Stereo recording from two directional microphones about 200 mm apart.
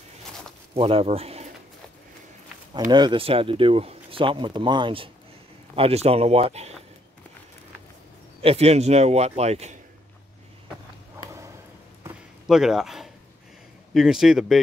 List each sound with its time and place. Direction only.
0.7 s speech: 30° right (ahead or behind)
2.9 s a man's voice: 25° right (ahead or behind)
8.4 s a man's voice: 30° right (ahead or behind)
12.4 s speech: centre (ahead or behind)